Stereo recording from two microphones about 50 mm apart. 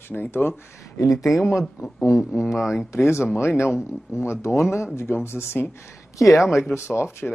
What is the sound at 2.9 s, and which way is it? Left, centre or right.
Speech, left.